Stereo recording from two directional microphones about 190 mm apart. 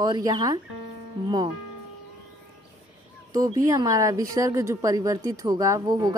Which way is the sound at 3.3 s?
20° right (ahead or behind).